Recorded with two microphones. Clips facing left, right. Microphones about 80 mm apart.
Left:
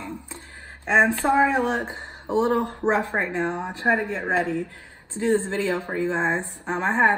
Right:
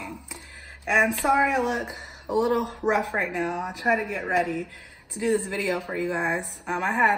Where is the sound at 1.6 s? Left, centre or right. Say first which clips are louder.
Left 2 dB; centre.